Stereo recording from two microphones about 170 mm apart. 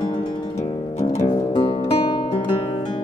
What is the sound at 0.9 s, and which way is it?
Music, 40° left (ahead or behind).